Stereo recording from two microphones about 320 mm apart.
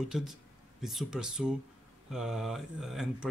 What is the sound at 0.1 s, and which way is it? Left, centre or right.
Speech, centre.